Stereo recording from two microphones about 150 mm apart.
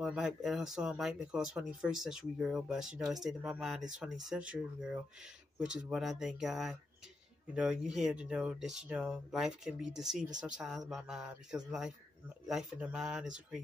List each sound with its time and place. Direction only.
0.0 s speech: 5° right (ahead or behind)